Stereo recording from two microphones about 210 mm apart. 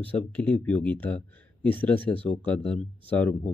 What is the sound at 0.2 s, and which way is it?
Speech, 5° left (ahead or behind).